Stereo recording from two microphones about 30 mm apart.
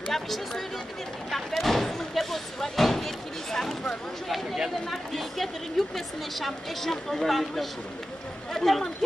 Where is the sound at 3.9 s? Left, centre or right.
Centre.